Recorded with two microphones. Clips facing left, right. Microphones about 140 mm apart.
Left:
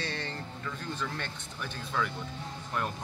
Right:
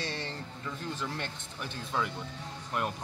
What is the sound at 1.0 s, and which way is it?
A man's voice, 20° right (ahead or behind).